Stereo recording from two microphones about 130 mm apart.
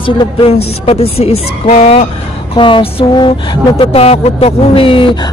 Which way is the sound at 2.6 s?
40° left (ahead or behind).